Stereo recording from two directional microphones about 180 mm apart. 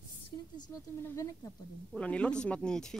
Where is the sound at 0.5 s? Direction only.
20° left (ahead or behind).